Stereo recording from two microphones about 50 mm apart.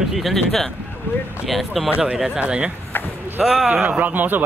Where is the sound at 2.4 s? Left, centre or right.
Right.